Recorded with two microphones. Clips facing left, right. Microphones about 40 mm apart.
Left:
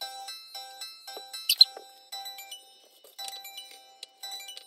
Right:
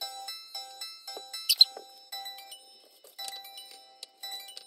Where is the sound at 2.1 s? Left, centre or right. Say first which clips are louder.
Left 2 dB; left.